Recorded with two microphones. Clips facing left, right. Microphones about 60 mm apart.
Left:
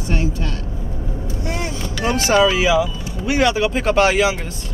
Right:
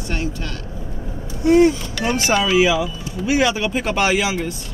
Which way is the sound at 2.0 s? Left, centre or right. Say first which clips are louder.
Left 3 dB; centre.